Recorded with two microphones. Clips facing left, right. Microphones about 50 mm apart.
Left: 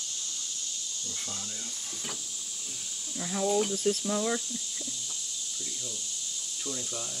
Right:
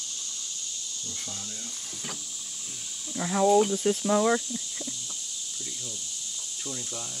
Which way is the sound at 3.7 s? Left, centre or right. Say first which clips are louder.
Right 5 dB; right.